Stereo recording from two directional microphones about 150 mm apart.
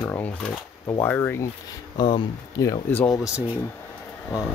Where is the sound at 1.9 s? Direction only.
35° left (ahead or behind).